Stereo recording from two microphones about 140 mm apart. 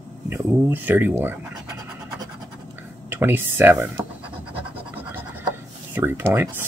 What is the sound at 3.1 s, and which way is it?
Speech, 15° right (ahead or behind).